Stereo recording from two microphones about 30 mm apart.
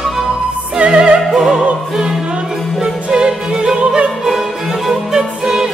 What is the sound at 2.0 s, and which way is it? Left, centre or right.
Music, centre.